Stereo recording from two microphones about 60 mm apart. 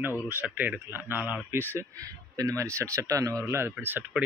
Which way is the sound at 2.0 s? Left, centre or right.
Right.